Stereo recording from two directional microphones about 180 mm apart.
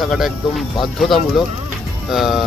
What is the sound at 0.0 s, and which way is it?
Speech, centre (ahead or behind).